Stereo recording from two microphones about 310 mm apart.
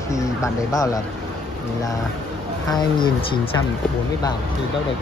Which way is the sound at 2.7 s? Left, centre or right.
Centre.